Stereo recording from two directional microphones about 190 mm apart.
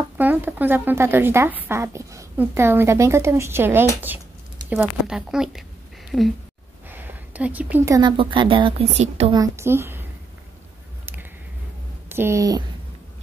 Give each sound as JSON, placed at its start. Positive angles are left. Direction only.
{"t": 0.2, "sound": "speech", "side_deg": -10}
{"t": 6.9, "sound": "a sound", "side_deg": -10}
{"t": 8.2, "sound": "a woman's voice", "side_deg": -25}
{"t": 9.3, "sound": "speech", "side_deg": -15}
{"t": 12.1, "sound": "speech", "side_deg": -15}